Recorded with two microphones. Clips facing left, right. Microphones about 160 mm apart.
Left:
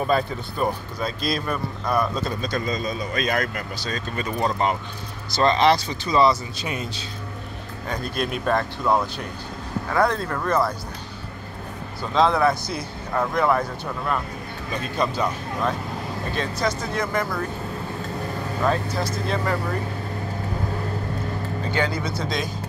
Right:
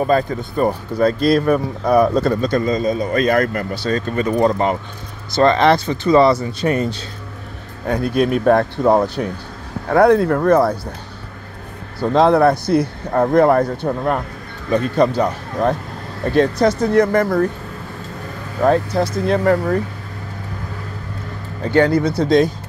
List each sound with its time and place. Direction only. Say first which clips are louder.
0.0 s speech: right 6 dB; 45° right (ahead or behind)
0.9 s speech: right 12 dB; 60° right (ahead or behind)
12.0 s speech: right 7 dB; 60° right (ahead or behind)
14.7 s speech: right 10 dB; 65° right (ahead or behind)
16.3 s speech: right 12 dB; 60° right (ahead or behind)
18.6 s speech: right 9 dB; 60° right (ahead or behind)
21.7 s speech: right 12 dB; 65° right (ahead or behind)